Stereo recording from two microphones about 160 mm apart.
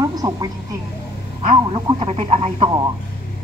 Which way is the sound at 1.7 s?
40° right (ahead or behind).